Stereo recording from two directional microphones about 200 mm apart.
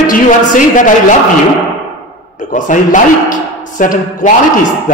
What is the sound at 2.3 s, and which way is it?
A man's voice, 40° left (ahead or behind).